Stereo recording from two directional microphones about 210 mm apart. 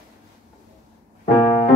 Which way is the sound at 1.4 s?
15° left (ahead or behind).